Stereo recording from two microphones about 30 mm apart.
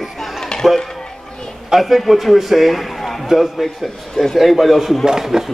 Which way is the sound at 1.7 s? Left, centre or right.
Centre.